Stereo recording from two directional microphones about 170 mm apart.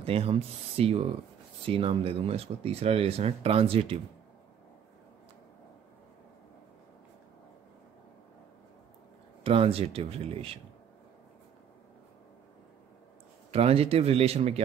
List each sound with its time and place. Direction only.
0.0 s speech: 35° right (ahead or behind)
9.4 s speech: 35° right (ahead or behind)
13.5 s speech: 35° right (ahead or behind)